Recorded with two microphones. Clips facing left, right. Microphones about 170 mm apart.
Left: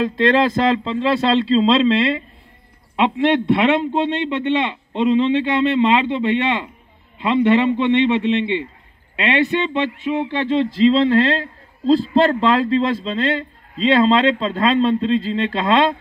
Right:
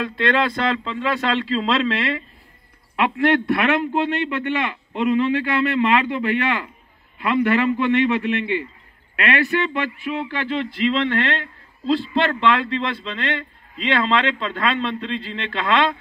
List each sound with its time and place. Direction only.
0.0 s a man's voice: 35° left (ahead or behind)